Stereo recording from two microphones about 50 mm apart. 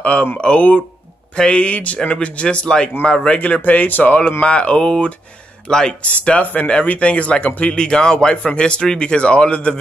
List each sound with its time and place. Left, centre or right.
0.0 s speech: left
3.3 s speech: left
4.4 s speech: left
6.0 s speech: left